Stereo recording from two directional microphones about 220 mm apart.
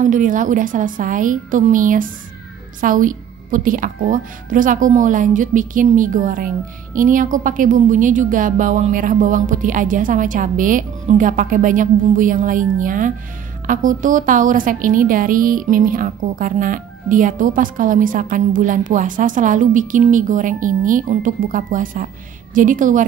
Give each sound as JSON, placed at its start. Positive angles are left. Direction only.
{"t": 0.0, "sound": "a woman's voice", "side_deg": -35}